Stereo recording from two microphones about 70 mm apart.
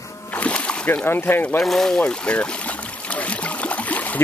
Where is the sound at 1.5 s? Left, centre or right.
Centre.